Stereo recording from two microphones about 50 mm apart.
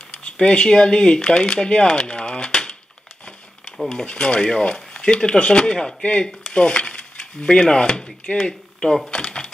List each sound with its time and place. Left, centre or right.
0.1 s speech: left
3.9 s speech: centre
8.5 s a sound: centre